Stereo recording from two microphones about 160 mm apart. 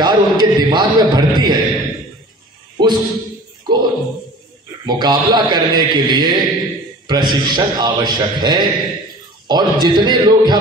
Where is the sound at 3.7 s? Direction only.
25° right (ahead or behind).